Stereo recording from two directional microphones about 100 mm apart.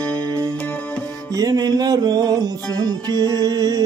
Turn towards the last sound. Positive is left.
turn(degrees=-40)  # may be behind; listen again after turning